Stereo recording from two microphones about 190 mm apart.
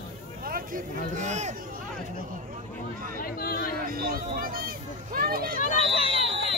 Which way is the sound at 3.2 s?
50° left (ahead or behind).